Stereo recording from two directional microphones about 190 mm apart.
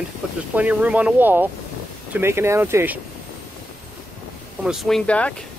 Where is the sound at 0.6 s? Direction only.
5° right (ahead or behind).